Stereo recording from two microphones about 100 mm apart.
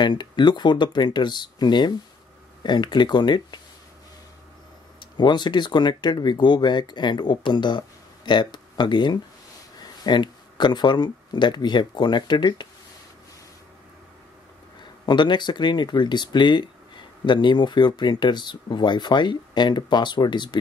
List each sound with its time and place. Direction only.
0.0 s speech: 50° left (ahead or behind)
5.1 s speech: 45° left (ahead or behind)
14.8 s speech: 45° left (ahead or behind)